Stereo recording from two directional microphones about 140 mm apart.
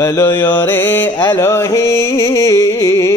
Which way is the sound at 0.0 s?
15° left (ahead or behind).